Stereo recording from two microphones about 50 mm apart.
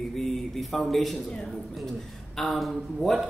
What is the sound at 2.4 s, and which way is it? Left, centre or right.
Speech, centre.